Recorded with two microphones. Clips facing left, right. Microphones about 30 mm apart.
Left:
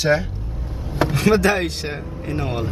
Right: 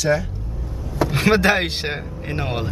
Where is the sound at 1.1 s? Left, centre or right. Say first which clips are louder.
Right 1 dB; right.